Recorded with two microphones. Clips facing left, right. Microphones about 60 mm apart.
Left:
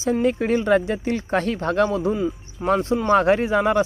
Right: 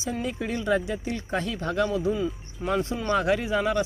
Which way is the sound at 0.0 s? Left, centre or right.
Left.